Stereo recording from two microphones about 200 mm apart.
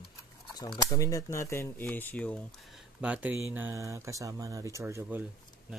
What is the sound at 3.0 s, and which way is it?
Speech, 5° right (ahead or behind).